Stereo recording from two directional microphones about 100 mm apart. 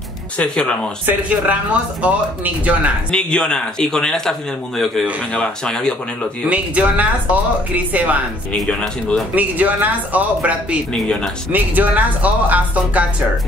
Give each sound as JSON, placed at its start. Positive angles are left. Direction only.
{"t": 0.4, "sound": "speech", "side_deg": 10}
{"t": 1.0, "sound": "speech", "side_deg": -15}
{"t": 3.1, "sound": "speech", "side_deg": 10}
{"t": 6.5, "sound": "speech", "side_deg": -15}
{"t": 8.5, "sound": "speech", "side_deg": 5}
{"t": 9.3, "sound": "speech", "side_deg": -15}
{"t": 10.9, "sound": "speech", "side_deg": 10}
{"t": 11.5, "sound": "speech", "side_deg": -15}